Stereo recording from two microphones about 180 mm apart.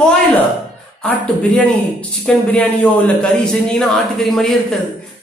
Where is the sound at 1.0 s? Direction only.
5° left (ahead or behind).